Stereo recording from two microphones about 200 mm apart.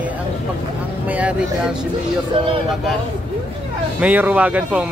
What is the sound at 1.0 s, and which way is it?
Speech, 5° right (ahead or behind).